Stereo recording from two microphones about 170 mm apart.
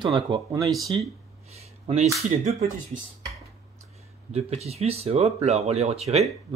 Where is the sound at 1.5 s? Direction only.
40° right (ahead or behind).